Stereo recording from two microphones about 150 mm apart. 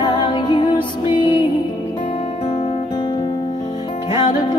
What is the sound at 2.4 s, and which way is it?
Music, 40° left (ahead or behind).